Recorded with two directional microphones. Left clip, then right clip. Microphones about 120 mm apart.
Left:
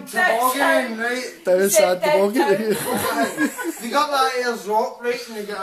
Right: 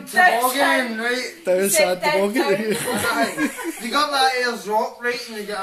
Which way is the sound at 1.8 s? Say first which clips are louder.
Left 2 dB; 15° left (ahead or behind).